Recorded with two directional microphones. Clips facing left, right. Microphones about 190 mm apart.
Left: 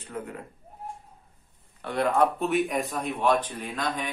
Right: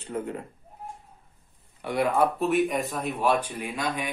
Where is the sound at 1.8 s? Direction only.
10° right (ahead or behind).